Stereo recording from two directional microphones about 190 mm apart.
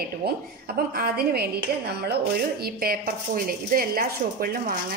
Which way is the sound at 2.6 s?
50° right (ahead or behind).